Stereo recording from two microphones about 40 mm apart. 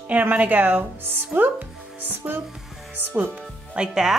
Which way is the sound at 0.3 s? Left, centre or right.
Right.